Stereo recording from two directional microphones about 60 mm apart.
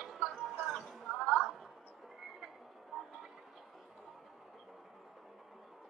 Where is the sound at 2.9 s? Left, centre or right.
Centre.